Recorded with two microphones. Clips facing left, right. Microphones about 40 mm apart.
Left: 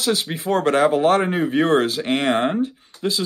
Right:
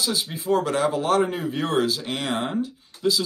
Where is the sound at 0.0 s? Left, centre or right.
Left.